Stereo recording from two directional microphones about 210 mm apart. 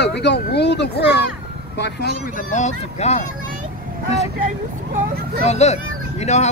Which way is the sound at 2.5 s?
30° left (ahead or behind).